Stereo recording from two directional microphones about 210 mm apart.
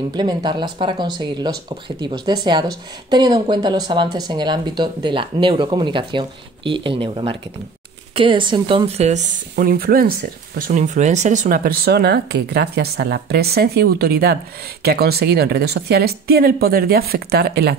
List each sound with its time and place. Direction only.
0.1 s speech: 20° right (ahead or behind); by 17.7 s 50° right (ahead or behind)